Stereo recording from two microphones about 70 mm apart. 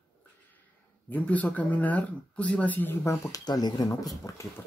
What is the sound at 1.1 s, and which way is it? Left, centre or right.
Speech, left.